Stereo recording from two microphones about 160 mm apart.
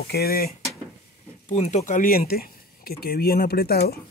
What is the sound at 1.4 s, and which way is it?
Speech, 45° left (ahead or behind).